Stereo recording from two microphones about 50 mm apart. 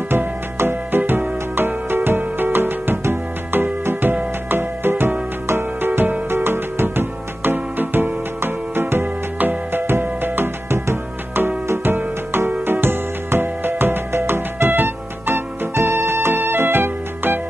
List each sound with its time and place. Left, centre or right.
0.6 s music: right